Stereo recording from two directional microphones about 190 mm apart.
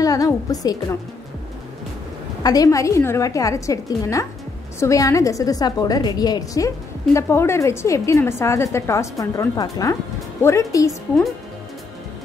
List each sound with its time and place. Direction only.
0.0 s a woman's voice: 20° left (ahead or behind)
2.4 s a woman's voice: 20° left (ahead or behind)